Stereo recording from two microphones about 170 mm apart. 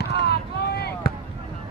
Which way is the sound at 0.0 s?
75° left (ahead or behind).